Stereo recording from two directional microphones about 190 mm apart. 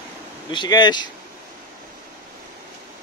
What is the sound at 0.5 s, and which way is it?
Speech, 20° left (ahead or behind).